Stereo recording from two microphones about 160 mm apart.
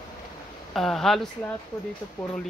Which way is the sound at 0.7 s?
Centre (ahead or behind).